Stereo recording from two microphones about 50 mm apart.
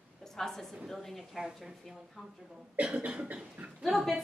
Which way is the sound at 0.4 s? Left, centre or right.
Centre.